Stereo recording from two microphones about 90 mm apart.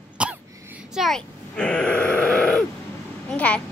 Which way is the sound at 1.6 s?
10° left (ahead or behind).